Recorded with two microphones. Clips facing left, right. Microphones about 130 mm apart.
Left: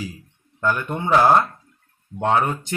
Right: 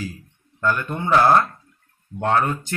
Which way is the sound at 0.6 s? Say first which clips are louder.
Even; 15° left (ahead or behind).